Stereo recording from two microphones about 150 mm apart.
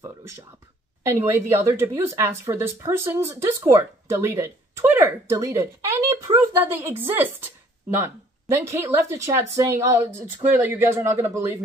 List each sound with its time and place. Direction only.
1.0 s a woman's voice: 20° right (ahead or behind)